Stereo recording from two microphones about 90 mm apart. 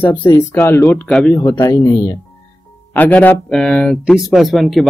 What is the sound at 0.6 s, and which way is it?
Speech, 25° left (ahead or behind).